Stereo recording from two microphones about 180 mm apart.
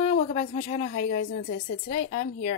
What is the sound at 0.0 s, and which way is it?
Speech, 35° left (ahead or behind).